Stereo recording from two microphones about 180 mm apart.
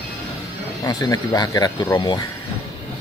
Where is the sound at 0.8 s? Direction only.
20° left (ahead or behind).